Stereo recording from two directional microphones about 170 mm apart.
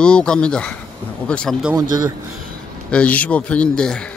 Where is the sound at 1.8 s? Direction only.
20° right (ahead or behind).